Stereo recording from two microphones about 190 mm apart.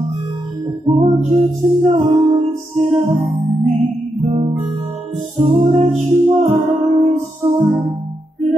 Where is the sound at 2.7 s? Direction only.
Centre (ahead or behind).